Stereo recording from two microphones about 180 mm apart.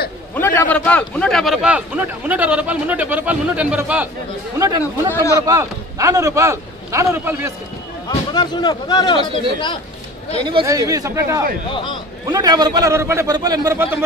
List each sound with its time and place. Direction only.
0.3 s a man's voice: 10° left (ahead or behind); by 5.1 s 15° right (ahead or behind)
5.1 s speech: 15° left (ahead or behind)
5.5 s a man's voice: 20° right (ahead or behind)
8.1 s speech: 25° left (ahead or behind)
10.6 s a man's voice: 20° right (ahead or behind)
11.7 s speech: 25° left (ahead or behind)
12.3 s a man's voice: 20° right (ahead or behind)